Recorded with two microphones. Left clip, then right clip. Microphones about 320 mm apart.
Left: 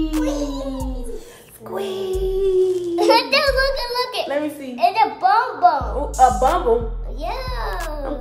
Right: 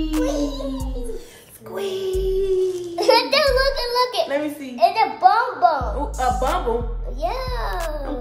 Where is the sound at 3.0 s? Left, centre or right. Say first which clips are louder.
Even; centre.